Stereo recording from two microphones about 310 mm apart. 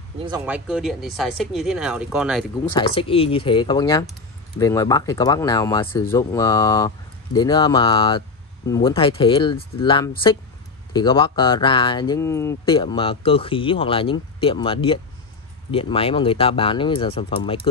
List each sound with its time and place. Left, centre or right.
0.2 s speech: centre
0.7 s speech: centre
2.7 s speech: centre